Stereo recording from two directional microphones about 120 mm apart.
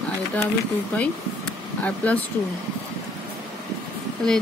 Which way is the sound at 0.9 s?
10° left (ahead or behind).